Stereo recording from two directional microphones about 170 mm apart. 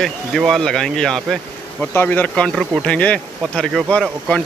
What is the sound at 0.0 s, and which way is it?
Speech, centre (ahead or behind).